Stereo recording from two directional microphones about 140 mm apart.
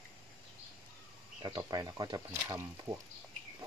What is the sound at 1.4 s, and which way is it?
Speech, 25° right (ahead or behind).